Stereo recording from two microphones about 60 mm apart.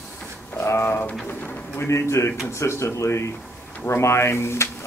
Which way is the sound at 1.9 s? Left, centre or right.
Left.